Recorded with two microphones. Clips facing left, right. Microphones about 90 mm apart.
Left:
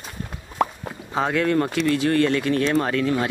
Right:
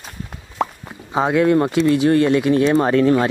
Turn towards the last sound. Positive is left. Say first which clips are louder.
# right 7 dB
turn(degrees=-35)  # may be behind; listen again after turning